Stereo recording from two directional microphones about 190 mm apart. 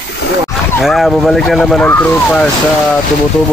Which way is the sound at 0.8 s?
Centre (ahead or behind).